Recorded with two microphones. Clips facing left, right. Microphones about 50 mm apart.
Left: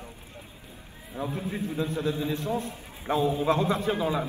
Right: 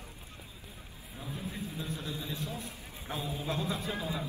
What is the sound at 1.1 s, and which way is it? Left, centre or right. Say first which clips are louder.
A man's voice: left 9 dB; left.